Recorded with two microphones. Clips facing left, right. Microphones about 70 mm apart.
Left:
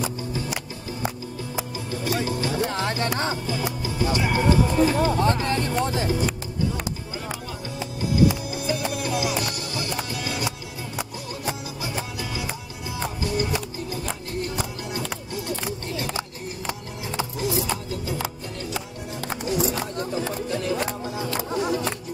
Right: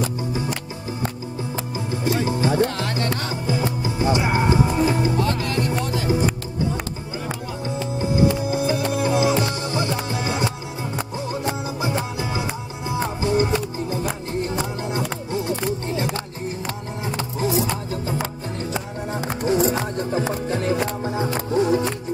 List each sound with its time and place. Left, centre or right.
1.9 s music: right
2.7 s music: left
3.4 s music: right
5.2 s music: left
6.0 s music: right
8.0 s music: right
18.6 s music: right